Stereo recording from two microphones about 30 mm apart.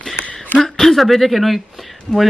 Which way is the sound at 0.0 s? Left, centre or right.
Left.